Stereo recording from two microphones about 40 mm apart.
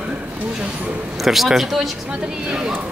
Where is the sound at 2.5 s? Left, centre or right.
Right.